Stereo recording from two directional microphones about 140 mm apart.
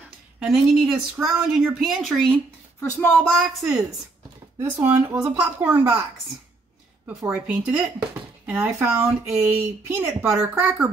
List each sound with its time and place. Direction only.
0.4 s speech: 5° right (ahead or behind)
2.8 s speech: 15° left (ahead or behind)
3.3 s speech: centre (ahead or behind)
4.6 s speech: 15° right (ahead or behind)
7.2 s a woman's voice: 10° right (ahead or behind)